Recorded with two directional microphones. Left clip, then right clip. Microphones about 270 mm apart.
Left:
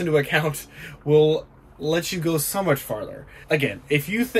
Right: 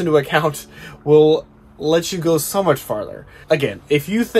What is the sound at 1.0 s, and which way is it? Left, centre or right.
Speech, centre.